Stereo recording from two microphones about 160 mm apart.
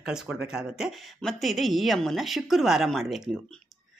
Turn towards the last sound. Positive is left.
turn(degrees=0)  # may be behind; listen again after turning